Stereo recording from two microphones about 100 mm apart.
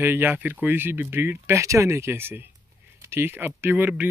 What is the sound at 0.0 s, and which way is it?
Speech, 20° right (ahead or behind).